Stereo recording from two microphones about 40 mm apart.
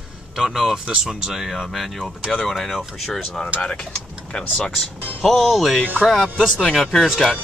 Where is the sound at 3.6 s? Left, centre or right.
Left.